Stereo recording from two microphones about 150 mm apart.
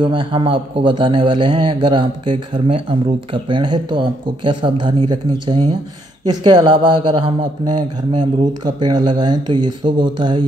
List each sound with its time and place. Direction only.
0.0 s a man's voice: 35° right (ahead or behind)